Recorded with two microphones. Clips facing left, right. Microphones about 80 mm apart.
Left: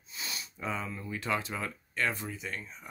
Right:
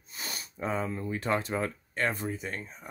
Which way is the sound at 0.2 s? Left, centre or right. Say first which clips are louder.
Right 3 dB; right.